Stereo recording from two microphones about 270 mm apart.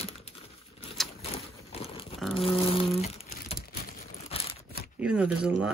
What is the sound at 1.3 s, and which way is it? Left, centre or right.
Crumpling, left.